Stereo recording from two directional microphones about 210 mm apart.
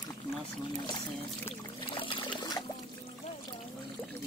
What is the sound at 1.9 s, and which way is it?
Trickle, 25° left (ahead or behind).